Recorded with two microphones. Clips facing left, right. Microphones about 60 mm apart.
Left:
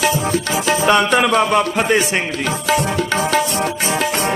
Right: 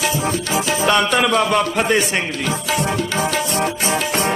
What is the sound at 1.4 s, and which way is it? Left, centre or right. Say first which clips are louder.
Music: left 2 dB; centre.